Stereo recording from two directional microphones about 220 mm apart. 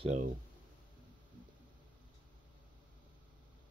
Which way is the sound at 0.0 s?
30° right (ahead or behind).